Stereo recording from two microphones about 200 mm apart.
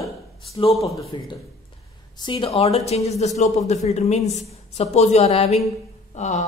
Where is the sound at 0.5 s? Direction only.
30° left (ahead or behind).